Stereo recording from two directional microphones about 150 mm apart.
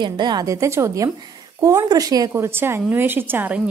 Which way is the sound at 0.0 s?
30° right (ahead or behind).